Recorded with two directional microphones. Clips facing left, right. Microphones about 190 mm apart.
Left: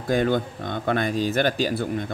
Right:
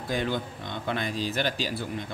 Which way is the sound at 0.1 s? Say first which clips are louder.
Left 8 dB; 50° left (ahead or behind).